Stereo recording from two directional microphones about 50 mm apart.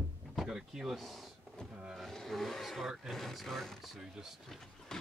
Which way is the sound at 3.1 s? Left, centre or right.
Centre.